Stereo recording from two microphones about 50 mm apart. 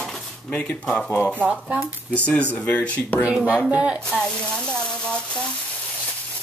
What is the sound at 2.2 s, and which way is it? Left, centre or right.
Speech, left.